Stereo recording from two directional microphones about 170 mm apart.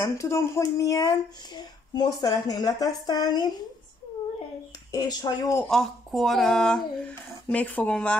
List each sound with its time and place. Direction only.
0.0 s speech: 15° left (ahead or behind)
4.9 s speech: 25° left (ahead or behind)
5.7 s speech: centre (ahead or behind)